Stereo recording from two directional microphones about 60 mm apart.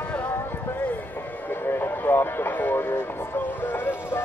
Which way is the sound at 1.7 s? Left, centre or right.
Left.